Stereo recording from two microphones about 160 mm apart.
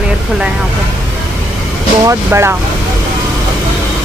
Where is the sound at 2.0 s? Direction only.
15° right (ahead or behind).